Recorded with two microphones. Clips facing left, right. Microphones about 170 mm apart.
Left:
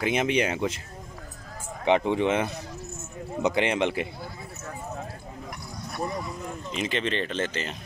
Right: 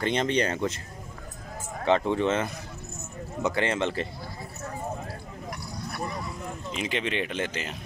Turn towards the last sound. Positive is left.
turn(degrees=-10)  # may be behind; listen again after turning